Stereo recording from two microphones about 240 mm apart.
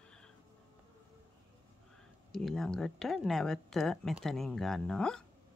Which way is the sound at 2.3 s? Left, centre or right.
Centre.